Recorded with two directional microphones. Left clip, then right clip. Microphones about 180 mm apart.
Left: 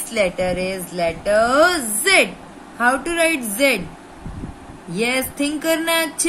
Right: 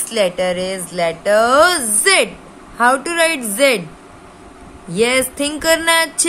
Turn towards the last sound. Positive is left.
turn(degrees=-65)  # may be behind; listen again after turning